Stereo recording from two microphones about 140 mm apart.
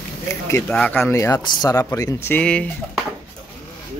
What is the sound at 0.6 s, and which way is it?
Speech, 5° left (ahead or behind).